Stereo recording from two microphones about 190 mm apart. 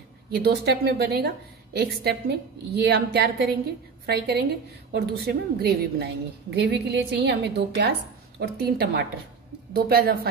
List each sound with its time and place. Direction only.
0.3 s a woman's voice: 55° right (ahead or behind)